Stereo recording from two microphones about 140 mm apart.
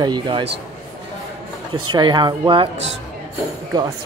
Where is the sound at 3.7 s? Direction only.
25° right (ahead or behind).